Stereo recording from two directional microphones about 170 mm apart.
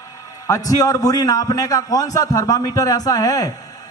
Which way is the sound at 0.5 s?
20° left (ahead or behind).